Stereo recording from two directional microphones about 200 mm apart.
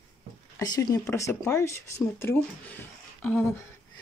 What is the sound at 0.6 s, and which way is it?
Speech, 20° left (ahead or behind).